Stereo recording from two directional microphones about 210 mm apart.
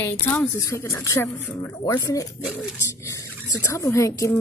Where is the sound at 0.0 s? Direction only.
10° left (ahead or behind).